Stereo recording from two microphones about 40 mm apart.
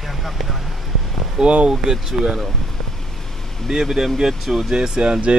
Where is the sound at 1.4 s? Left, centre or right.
Right.